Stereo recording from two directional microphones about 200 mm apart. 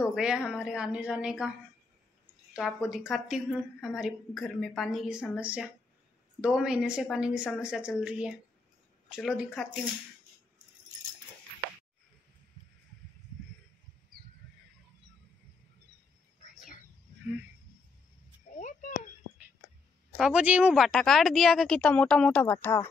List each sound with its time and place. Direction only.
0.0 s a woman's voice: 5° right (ahead or behind)
2.9 s a woman's voice: centre (ahead or behind)
18.6 s a sound: 40° left (ahead or behind)
20.2 s a woman's voice: 5° right (ahead or behind)